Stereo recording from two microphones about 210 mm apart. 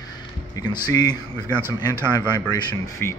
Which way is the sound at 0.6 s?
20° left (ahead or behind).